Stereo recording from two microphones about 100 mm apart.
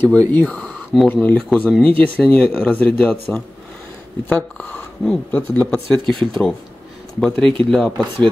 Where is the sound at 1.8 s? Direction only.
15° left (ahead or behind).